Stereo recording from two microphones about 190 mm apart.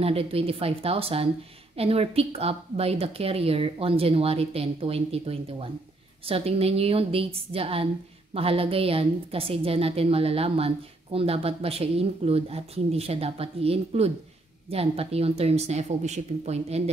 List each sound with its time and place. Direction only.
0.0 s a woman's voice: 30° right (ahead or behind)